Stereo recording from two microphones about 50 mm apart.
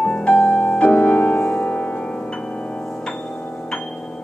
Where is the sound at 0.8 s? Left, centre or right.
Left.